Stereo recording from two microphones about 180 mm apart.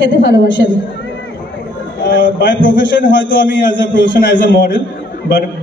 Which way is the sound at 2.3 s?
80° left.